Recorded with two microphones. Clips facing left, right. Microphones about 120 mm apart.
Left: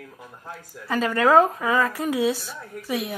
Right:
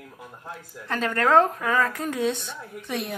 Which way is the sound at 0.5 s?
5° left (ahead or behind).